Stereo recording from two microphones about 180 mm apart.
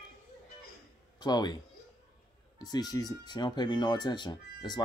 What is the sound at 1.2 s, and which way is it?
Speech, 25° left (ahead or behind).